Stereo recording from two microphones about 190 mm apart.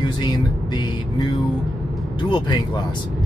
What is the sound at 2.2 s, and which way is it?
Speech, 20° left (ahead or behind).